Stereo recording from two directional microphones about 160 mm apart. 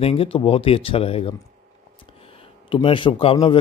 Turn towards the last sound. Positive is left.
turn(degrees=30)  # may be behind; listen again after turning